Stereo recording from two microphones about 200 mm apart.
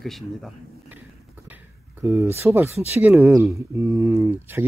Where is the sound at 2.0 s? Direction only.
10° right (ahead or behind).